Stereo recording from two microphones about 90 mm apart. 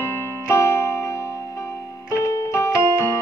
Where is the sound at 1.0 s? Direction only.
30° left (ahead or behind).